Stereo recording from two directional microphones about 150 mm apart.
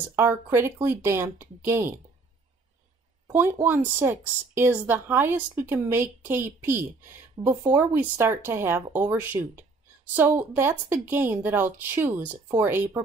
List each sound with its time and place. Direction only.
0.1 s speech: 15° right (ahead or behind)
3.3 s speech: 15° right (ahead or behind)